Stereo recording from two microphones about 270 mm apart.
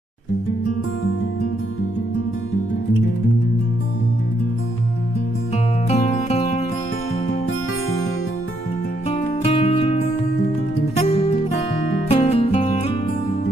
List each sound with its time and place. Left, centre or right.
5.9 s music: left
9.1 s music: left